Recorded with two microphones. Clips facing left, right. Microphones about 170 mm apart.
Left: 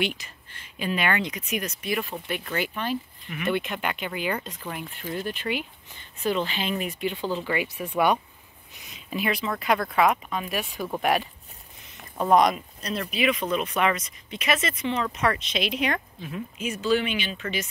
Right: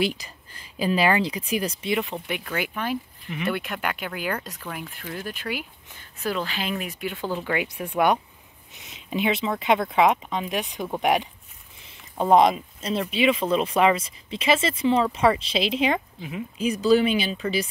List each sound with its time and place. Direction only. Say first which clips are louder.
0.0 s speech: right 3 dB; 35° right (ahead or behind); by 7.2 s 5° right (ahead or behind)
7.5 s speech: right 1 dB; 15° right (ahead or behind)
9.1 s speech: right 3 dB; 25° right (ahead or behind)
12.2 s speech: right 2 dB; 25° right (ahead or behind)
16.2 s speech: right 1 dB; 15° right (ahead or behind)
16.5 s speech: right 5 dB; 35° right (ahead or behind)